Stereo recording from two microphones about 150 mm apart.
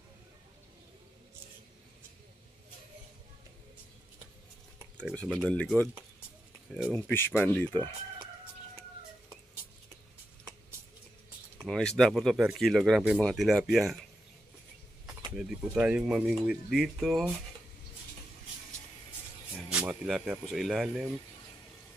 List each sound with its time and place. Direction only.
5.1 s speech: 5° left (ahead or behind)
6.9 s speech: 15° left (ahead or behind)
11.6 s speech: 5° left (ahead or behind)
15.3 s speech: 5° right (ahead or behind)
19.7 s a sound: 10° right (ahead or behind)
20.2 s speech: centre (ahead or behind)